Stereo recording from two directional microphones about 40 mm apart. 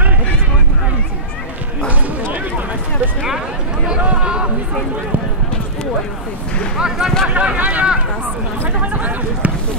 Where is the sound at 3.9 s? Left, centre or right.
Right.